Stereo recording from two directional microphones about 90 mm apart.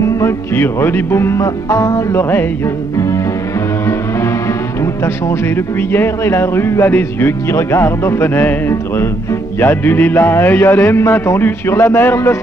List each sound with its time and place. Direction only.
0.2 s speech: 30° left (ahead or behind)
5.0 s speech: 30° left (ahead or behind)